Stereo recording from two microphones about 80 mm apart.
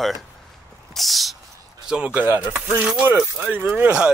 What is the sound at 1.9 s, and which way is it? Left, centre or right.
Speech, centre.